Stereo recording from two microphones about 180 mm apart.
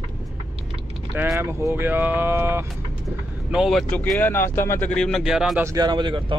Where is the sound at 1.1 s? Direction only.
10° right (ahead or behind).